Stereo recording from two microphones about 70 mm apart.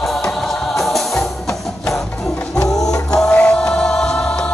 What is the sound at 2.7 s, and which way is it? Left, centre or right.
Music, left.